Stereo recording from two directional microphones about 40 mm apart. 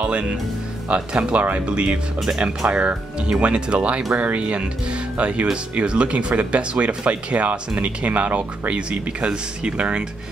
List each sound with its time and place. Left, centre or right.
0.0 s speech: right